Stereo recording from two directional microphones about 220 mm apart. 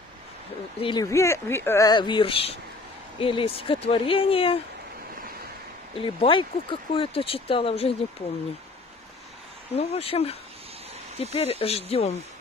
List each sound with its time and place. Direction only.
0.7 s speech: 20° left (ahead or behind)
5.9 s speech: 25° left (ahead or behind)
9.8 s speech: 25° left (ahead or behind)